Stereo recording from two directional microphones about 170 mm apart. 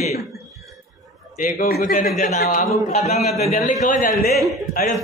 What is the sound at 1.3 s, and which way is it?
Speech, 55° left (ahead or behind).